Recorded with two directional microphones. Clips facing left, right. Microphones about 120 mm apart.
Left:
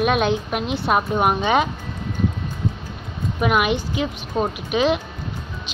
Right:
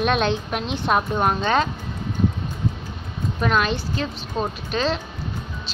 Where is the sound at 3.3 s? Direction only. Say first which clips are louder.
Left 2 dB; 15° left (ahead or behind).